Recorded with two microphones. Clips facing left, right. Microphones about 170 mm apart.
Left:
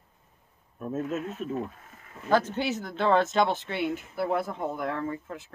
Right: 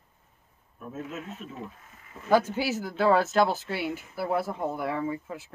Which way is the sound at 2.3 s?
10° right (ahead or behind).